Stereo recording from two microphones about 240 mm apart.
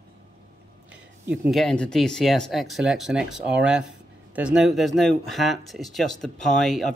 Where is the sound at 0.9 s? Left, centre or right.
Centre.